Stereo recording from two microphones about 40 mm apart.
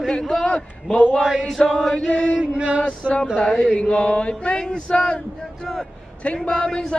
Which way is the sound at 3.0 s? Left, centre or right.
Right.